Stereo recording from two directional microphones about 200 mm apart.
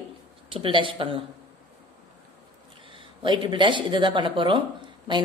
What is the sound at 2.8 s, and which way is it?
Speech, 25° right (ahead or behind).